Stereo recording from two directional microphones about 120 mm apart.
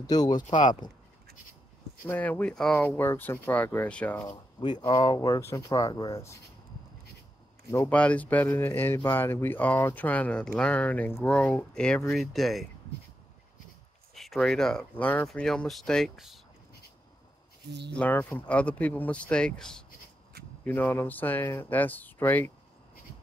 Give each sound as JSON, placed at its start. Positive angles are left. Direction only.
{"t": 0.0, "sound": "speech", "side_deg": 35}
{"t": 0.5, "sound": "speech", "side_deg": 90}
{"t": 2.0, "sound": "speech", "side_deg": 15}
{"t": 3.0, "sound": "speech", "side_deg": 15}
{"t": 4.2, "sound": "speech", "side_deg": 35}
{"t": 7.9, "sound": "speech", "side_deg": 10}
{"t": 14.1, "sound": "speech", "side_deg": 0}
{"t": 17.9, "sound": "speech", "side_deg": 15}